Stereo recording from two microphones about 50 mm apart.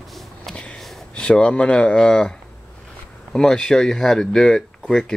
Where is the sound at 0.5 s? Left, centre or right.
Centre.